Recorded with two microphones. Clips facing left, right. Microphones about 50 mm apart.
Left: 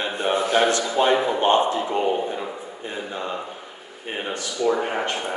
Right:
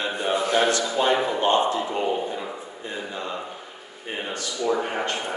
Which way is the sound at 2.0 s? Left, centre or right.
Centre.